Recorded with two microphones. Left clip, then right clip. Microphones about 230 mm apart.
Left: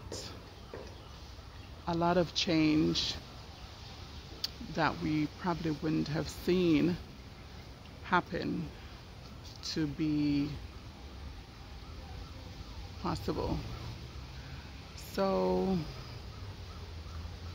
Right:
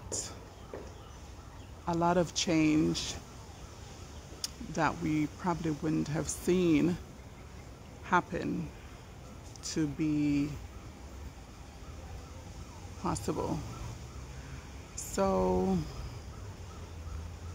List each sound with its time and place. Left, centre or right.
1.9 s speech: centre
4.4 s speech: centre
8.1 s speech: centre
9.6 s speech: centre
13.0 s speech: centre
15.1 s speech: centre